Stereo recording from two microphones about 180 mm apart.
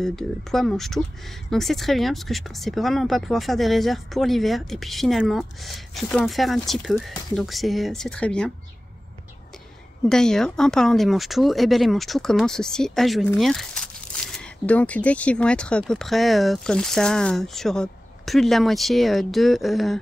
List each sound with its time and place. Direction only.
0.0 s speech: centre (ahead or behind)
10.0 s speech: 5° left (ahead or behind)